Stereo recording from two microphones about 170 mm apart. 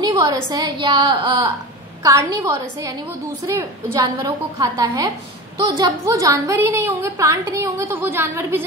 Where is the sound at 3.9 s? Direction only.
20° right (ahead or behind).